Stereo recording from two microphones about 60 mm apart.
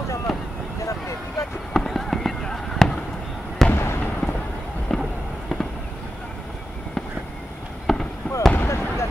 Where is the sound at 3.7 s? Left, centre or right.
Left.